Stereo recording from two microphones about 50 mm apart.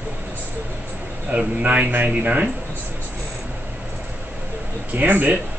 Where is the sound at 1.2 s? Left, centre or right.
Right.